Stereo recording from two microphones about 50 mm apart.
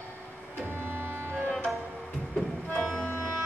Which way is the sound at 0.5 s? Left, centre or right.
Right.